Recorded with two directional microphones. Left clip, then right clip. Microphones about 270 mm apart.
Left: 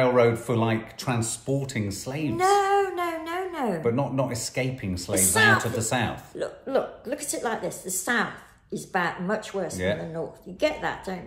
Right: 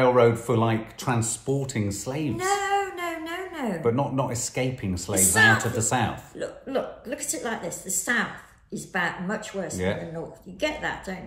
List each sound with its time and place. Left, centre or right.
0.0 s speech: centre
2.3 s babbling: centre
3.8 s speech: centre
6.3 s a woman's voice: centre